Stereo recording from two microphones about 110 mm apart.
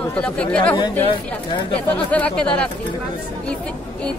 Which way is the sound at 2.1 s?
15° left (ahead or behind).